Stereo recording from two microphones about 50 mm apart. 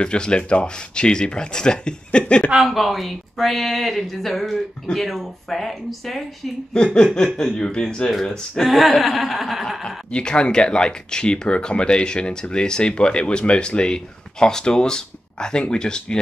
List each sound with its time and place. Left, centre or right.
0.0 s speech: centre
2.6 s speech: centre
6.7 s speech: centre
9.8 s speech: centre